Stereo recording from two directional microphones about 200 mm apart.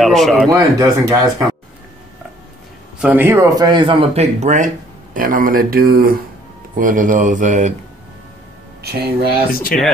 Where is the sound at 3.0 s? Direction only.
10° right (ahead or behind); by 7.7 s 40° right (ahead or behind).